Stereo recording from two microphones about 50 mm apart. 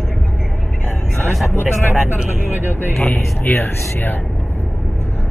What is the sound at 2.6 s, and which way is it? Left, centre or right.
Speech, left.